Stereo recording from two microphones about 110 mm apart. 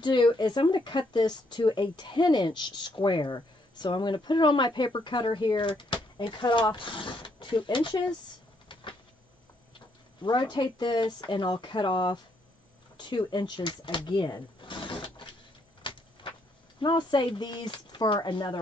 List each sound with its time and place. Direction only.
0.0 s speech: 45° left (ahead or behind)
9.8 s speech: 45° left (ahead or behind)
15.8 s a sound: 50° left (ahead or behind)
16.8 s speech: 45° left (ahead or behind)